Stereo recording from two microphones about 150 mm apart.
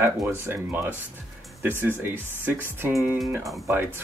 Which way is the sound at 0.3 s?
15° right (ahead or behind).